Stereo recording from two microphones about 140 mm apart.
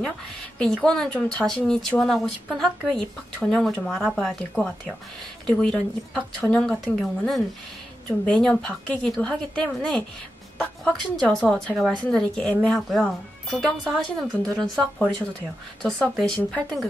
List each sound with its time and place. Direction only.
0.8 s a woman's voice: 5° left (ahead or behind)